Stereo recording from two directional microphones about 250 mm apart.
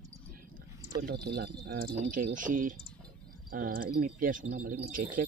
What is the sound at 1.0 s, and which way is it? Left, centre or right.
Speech, right.